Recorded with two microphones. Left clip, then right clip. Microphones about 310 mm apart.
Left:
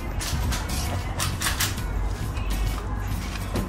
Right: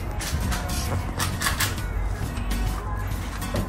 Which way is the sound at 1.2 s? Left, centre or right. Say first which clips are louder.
Right 1 dB; centre.